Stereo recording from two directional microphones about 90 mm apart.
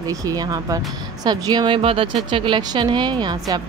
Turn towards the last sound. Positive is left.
turn(degrees=-50)  # may be behind; listen again after turning